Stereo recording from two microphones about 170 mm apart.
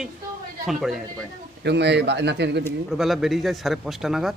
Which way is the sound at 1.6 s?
90° right.